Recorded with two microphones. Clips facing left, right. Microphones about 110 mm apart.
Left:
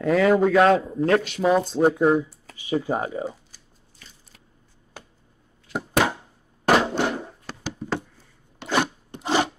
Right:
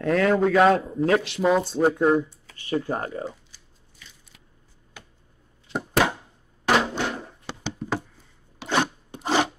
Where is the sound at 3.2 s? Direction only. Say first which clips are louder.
Left 3 dB; 40° left (ahead or behind).